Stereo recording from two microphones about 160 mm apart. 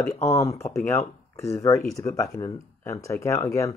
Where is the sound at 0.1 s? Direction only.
20° left (ahead or behind).